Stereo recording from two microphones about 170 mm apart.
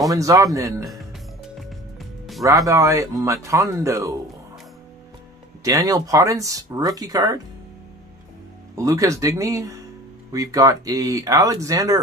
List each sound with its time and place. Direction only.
0.1 s speech: 20° right (ahead or behind)
1.6 s music: centre (ahead or behind)
2.4 s speech: 20° right (ahead or behind)
5.6 s speech: 20° right (ahead or behind)
8.7 s speech: 20° right (ahead or behind)